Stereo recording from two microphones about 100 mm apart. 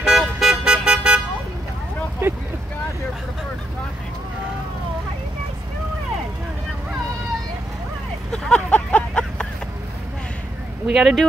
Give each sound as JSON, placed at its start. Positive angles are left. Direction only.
{"t": 0.0, "sound": "vehicle", "side_deg": -5}
{"t": 2.2, "sound": "vehicle", "side_deg": -20}
{"t": 8.3, "sound": "a sound", "side_deg": 10}
{"t": 10.9, "sound": "speech", "side_deg": -5}